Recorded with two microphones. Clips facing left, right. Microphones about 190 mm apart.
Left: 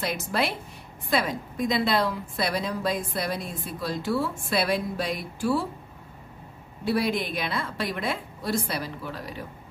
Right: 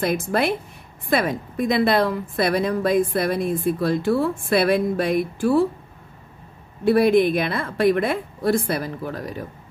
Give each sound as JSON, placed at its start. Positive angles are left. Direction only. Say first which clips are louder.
{"t": 0.0, "sound": "a woman's voice", "louder": "right 6 dB", "side_deg": -50}
{"t": 6.8, "sound": "a woman's voice", "louder": "right 10 dB", "side_deg": -55}